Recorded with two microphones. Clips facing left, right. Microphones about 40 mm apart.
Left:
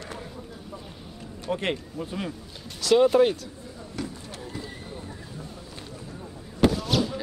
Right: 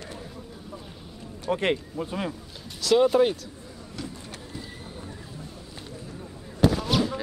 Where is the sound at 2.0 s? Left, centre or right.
Right.